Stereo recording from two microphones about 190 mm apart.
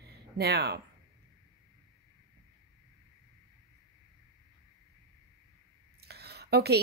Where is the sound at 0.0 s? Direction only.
55° right (ahead or behind).